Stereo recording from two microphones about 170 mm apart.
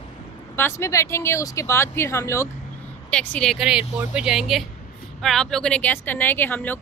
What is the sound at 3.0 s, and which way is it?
Speech, 5° left (ahead or behind).